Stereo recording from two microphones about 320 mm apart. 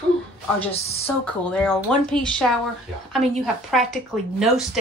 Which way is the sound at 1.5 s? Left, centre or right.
Centre.